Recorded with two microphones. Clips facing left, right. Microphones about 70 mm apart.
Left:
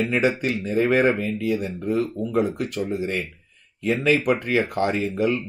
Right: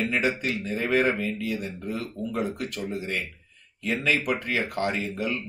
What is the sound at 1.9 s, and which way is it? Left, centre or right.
Speech, left.